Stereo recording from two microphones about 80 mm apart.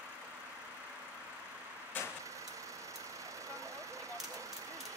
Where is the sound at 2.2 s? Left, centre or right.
Right.